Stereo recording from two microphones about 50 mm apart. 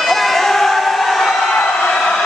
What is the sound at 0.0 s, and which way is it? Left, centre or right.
Crowd, centre.